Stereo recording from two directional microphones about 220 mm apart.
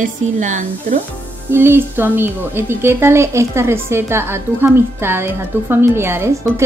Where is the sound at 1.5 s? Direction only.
10° right (ahead or behind).